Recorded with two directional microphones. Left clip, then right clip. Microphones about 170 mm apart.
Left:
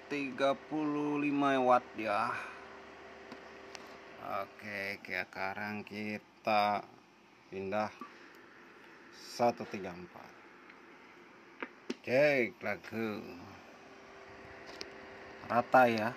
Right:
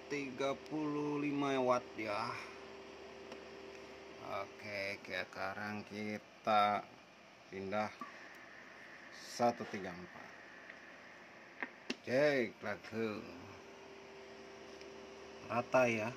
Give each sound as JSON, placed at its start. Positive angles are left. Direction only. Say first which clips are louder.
{"t": 0.1, "sound": "speech", "louder": "left 6 dB", "side_deg": 15}
{"t": 4.3, "sound": "speech", "louder": "left 4 dB", "side_deg": 15}
{"t": 9.3, "sound": "speech", "louder": "left 3 dB", "side_deg": 10}
{"t": 12.0, "sound": "speech", "louder": "left 5 dB", "side_deg": 15}
{"t": 15.4, "sound": "speech", "louder": "left 6 dB", "side_deg": 35}